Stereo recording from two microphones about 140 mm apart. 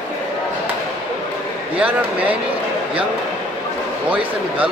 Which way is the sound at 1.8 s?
10° right (ahead or behind).